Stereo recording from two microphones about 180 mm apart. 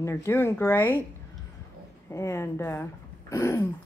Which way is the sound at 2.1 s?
15° left (ahead or behind).